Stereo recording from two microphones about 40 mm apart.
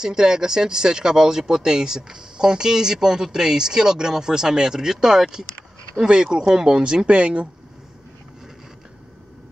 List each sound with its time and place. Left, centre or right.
0.0 s speech: centre